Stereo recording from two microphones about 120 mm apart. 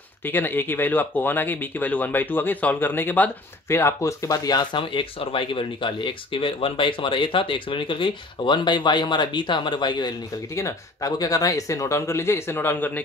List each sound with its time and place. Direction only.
0.2 s speech: 15° left (ahead or behind); by 10.1 s 40° left (ahead or behind)
10.5 s speech: 25° left (ahead or behind)